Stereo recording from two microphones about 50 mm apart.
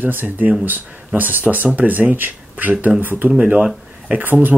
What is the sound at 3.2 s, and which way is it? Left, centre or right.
Speech, right.